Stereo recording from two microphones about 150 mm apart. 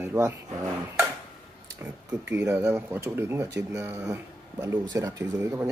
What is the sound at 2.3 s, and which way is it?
Speech, 15° right (ahead or behind).